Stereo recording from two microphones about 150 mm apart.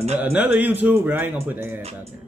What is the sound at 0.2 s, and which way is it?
Speech, 10° right (ahead or behind).